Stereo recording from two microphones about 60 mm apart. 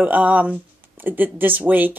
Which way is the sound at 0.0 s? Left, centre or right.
Right.